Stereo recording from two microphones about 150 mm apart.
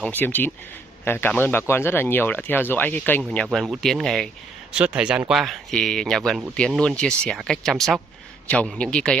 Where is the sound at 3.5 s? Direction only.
Centre (ahead or behind).